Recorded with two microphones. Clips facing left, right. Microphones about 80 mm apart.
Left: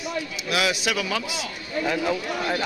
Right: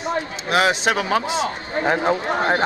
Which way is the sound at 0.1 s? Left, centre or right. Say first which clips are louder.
Right 7 dB; right.